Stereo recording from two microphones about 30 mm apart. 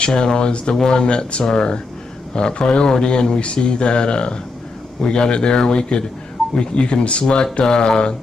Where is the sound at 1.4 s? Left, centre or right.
Left.